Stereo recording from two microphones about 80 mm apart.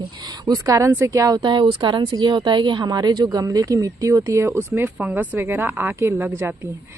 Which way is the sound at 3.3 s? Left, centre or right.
Right.